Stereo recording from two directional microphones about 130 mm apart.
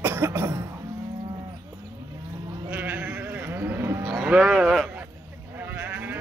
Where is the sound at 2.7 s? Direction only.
15° right (ahead or behind).